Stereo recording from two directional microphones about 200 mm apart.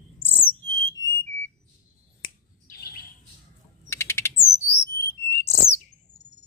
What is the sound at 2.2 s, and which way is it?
Finger snapping, 50° left (ahead or behind).